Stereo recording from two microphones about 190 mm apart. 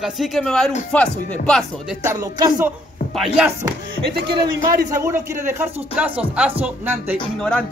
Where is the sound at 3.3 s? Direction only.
10° right (ahead or behind).